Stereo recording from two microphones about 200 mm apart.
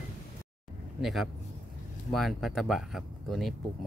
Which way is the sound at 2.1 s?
Centre (ahead or behind).